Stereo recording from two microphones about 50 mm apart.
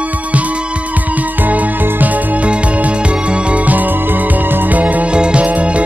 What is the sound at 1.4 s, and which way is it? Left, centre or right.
Music, right.